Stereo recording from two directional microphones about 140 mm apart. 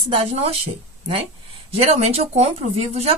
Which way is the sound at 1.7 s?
45° right (ahead or behind).